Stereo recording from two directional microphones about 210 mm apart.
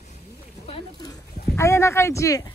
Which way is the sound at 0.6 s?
20° left (ahead or behind).